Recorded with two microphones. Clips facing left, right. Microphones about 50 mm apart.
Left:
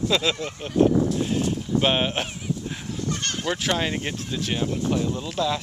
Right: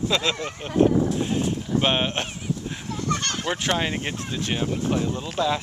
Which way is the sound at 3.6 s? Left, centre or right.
Centre.